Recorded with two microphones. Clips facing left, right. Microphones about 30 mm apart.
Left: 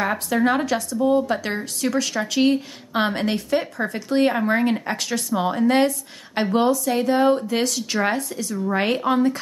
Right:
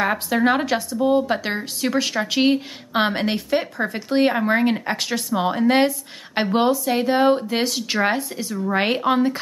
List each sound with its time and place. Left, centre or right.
0.0 s speech: centre